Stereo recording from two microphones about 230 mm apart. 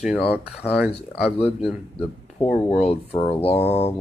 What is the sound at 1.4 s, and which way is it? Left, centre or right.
Speech, centre.